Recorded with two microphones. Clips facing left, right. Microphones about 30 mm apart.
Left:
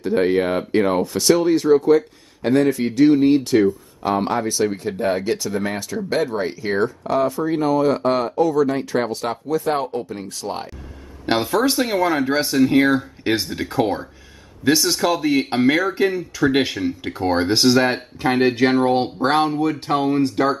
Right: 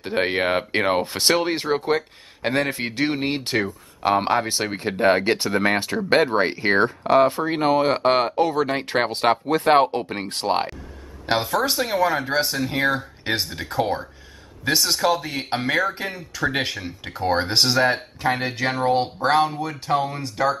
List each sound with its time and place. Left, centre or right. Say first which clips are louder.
0.0 s speech: left 4 dB; right
11.2 s speech: left 3 dB; centre
17.7 s speech: left 2 dB; centre